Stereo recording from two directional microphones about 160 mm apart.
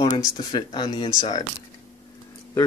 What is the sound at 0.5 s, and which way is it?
Speech, 30° left (ahead or behind).